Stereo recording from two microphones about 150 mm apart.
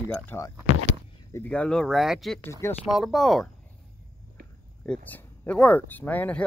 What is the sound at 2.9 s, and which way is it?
Speech, centre (ahead or behind).